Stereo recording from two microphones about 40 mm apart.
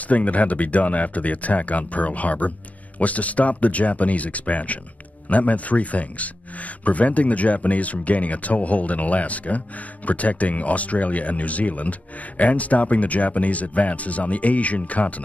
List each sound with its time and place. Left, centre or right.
0.1 s speech: left